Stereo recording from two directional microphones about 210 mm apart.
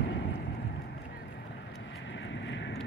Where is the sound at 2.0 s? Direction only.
60° left (ahead or behind).